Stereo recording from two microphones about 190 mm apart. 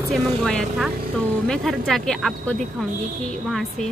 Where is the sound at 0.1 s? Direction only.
5° left (ahead or behind).